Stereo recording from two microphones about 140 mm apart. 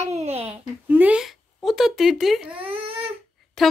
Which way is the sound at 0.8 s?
10° right (ahead or behind).